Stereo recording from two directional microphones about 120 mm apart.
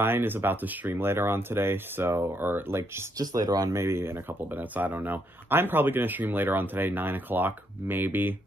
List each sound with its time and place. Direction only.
0.0 s speech: 20° right (ahead or behind)